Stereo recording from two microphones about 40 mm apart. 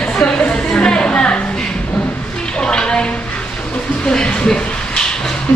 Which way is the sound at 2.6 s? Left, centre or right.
Left.